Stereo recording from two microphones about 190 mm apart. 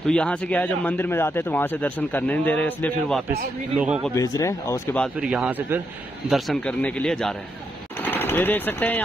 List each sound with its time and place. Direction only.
0.0 s speech: 5° left (ahead or behind)
4.1 s speech: 15° left (ahead or behind)
5.2 s speech: 5° right (ahead or behind)